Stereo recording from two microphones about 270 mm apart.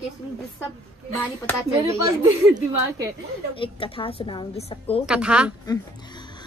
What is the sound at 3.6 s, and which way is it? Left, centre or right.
A woman's voice, centre.